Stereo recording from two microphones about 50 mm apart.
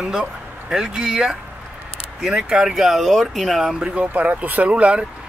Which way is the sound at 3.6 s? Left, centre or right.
Right.